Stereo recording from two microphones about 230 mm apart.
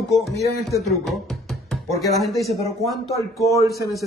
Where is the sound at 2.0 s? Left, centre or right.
Centre.